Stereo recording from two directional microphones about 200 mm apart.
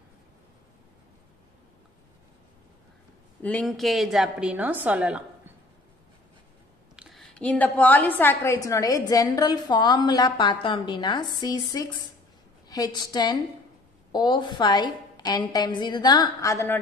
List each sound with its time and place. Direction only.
3.4 s a woman's voice: 5° left (ahead or behind)
7.0 s a sound: centre (ahead or behind)
8.2 s a woman's voice: 10° left (ahead or behind)
12.6 s a woman's voice: 20° left (ahead or behind)